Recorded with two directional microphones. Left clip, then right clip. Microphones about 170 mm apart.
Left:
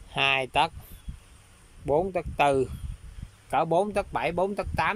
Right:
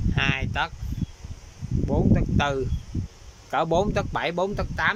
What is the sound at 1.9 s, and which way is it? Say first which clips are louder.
Speech: left 1 dB; 20° left (ahead or behind).